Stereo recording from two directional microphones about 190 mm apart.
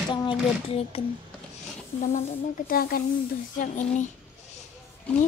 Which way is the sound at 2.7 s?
50° left (ahead or behind).